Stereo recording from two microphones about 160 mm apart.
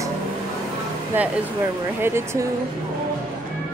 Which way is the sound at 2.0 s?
15° right (ahead or behind).